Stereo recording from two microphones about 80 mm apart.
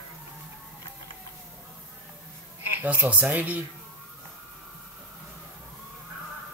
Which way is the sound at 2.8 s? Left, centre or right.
Centre.